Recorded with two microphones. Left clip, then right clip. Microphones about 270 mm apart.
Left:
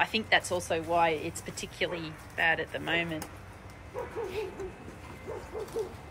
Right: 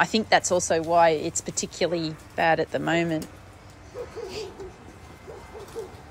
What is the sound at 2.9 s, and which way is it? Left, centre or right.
Speech, right.